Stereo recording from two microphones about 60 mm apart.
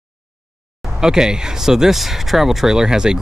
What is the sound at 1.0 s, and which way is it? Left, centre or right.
Speech, centre.